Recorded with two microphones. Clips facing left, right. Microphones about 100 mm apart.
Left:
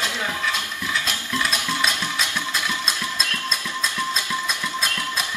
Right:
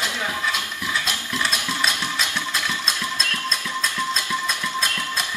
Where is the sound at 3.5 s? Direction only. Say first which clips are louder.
Right 1 dB; 10° left (ahead or behind).